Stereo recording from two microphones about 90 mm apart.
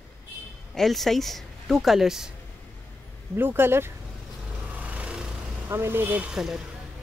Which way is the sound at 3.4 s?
25° right (ahead or behind).